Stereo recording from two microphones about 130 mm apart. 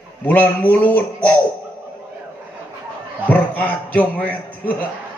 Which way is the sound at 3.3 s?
10° left (ahead or behind).